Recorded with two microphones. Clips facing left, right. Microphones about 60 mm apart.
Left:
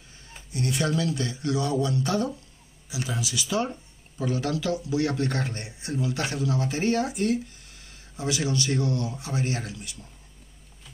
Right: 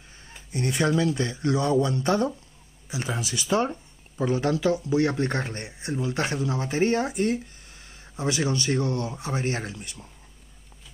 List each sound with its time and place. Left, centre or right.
0.5 s a man's voice: right